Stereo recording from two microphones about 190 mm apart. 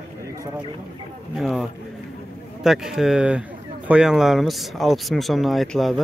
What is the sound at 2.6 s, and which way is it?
Speech, centre (ahead or behind).